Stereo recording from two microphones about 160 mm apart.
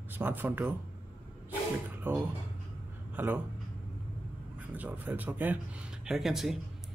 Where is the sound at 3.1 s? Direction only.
10° right (ahead or behind).